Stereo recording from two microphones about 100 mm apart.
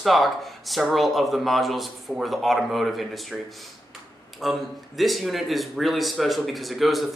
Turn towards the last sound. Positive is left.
turn(degrees=0)  # may be behind; listen again after turning